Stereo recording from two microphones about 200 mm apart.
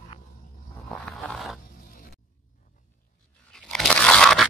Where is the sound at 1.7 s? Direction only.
45° left (ahead or behind).